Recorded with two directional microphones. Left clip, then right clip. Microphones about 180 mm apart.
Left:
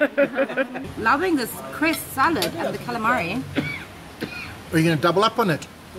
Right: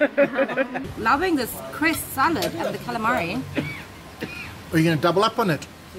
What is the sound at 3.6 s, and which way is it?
Speech, 45° left (ahead or behind).